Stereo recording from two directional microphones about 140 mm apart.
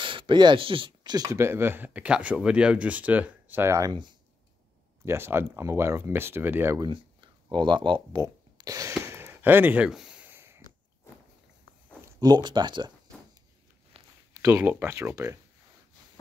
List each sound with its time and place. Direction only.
0.0 s speech: 35° right (ahead or behind); by 3.9 s 20° right (ahead or behind)
5.0 s speech: 15° right (ahead or behind)
6.8 s speech: 35° right (ahead or behind)
8.2 s a sound: 25° right (ahead or behind)
12.2 s speech: 30° right (ahead or behind)
13.9 s a sound: 45° right (ahead or behind)
14.4 s speech: 15° right (ahead or behind)